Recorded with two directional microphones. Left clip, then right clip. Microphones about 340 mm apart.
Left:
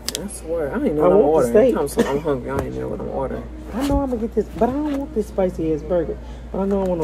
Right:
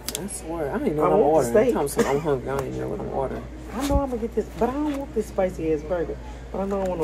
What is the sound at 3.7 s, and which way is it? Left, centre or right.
A woman's voice, left.